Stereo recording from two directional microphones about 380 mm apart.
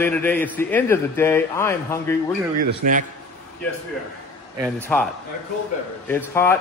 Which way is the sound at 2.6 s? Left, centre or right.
Right.